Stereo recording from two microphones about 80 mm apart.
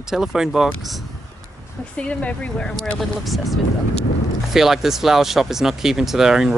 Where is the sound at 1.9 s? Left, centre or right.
Centre.